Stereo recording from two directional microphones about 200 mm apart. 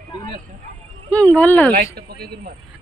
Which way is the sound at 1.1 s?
5° left (ahead or behind).